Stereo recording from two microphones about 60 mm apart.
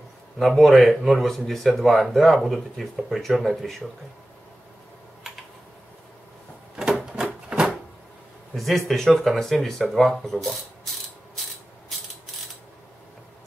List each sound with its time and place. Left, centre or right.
0.4 s speech: centre
6.8 s printer: centre
7.2 s a sound: centre
8.5 s speech: centre